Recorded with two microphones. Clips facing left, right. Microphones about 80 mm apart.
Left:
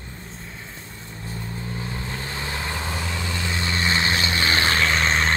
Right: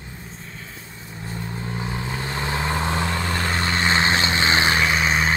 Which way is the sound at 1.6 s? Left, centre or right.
Centre.